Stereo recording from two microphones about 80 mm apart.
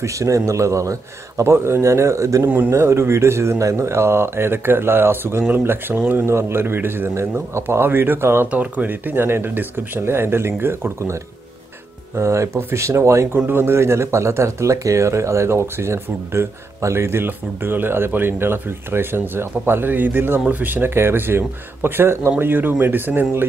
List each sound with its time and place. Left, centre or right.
0.0 s speech: right
8.5 s speech: centre
12.2 s speech: right